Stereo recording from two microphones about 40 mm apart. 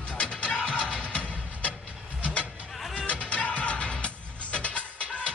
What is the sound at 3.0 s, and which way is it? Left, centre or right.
Music, left.